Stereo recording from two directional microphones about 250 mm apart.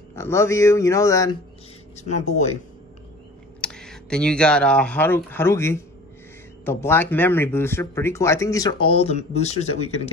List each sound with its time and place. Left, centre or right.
0.1 s speech: centre
2.0 s speech: left
3.6 s speech: centre; by 9.7 s left